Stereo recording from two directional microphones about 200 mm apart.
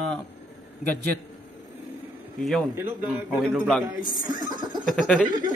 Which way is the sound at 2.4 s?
Centre (ahead or behind).